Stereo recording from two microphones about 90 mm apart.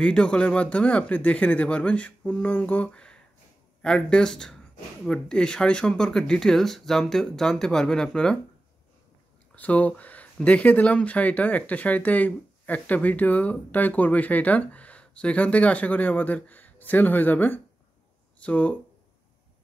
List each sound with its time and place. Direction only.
0.0 s speech: 10° left (ahead or behind)
2.4 s mantra: 15° left (ahead or behind)
3.8 s speech: 10° left (ahead or behind)
9.6 s speech: 15° left (ahead or behind)